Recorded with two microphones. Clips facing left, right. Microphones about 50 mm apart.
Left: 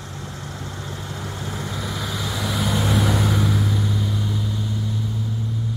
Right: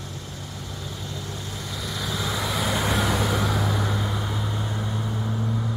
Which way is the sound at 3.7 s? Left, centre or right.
Right.